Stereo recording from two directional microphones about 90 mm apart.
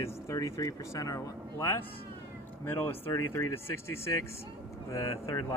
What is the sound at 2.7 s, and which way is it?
Speech, 25° left (ahead or behind).